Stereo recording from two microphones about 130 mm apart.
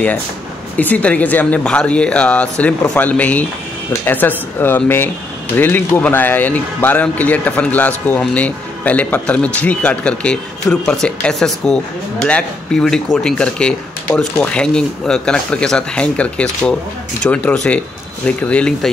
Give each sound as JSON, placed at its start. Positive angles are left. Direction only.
{"t": 0.7, "sound": "speech", "side_deg": 10}